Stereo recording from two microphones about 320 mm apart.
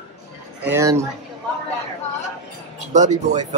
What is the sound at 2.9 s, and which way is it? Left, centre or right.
Speech, right.